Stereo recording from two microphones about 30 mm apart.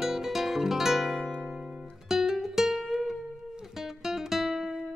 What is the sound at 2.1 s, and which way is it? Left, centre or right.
Music, centre.